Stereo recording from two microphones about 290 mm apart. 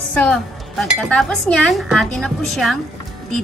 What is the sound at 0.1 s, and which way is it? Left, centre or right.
Speech, centre.